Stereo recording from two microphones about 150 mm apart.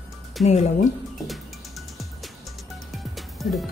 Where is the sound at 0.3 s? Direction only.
Centre (ahead or behind).